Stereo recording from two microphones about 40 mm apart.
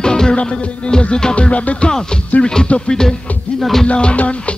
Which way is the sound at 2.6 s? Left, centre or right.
Left.